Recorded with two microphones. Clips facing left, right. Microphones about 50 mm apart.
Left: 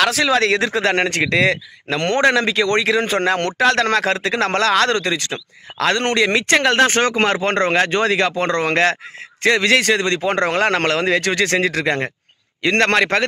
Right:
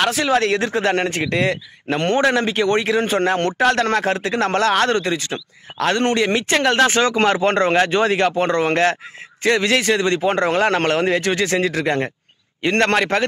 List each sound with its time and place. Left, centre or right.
0.0 s a man's voice: left